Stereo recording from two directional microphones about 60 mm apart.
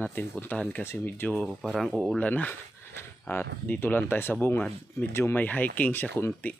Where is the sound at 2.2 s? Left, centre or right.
Left.